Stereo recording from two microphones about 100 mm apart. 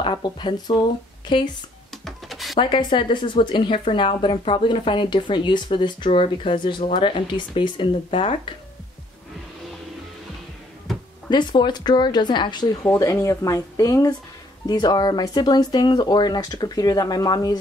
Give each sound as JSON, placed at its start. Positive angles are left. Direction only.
{"t": 0.0, "sound": "speech", "side_deg": 55}
{"t": 2.0, "sound": "a sound", "side_deg": 0}
{"t": 2.6, "sound": "speech", "side_deg": 50}
{"t": 11.2, "sound": "speech", "side_deg": 50}
{"t": 12.8, "sound": "speech", "side_deg": 30}